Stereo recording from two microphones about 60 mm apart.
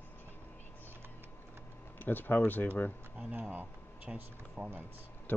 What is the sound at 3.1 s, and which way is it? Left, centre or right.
Speech, right.